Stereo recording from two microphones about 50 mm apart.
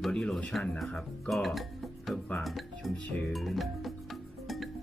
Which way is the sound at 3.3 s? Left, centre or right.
Centre.